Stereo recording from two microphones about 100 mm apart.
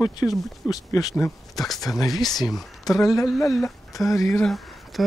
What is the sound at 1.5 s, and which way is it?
Speech, centre (ahead or behind).